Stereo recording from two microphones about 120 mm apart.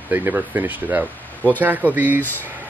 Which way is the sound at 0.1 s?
15° right (ahead or behind).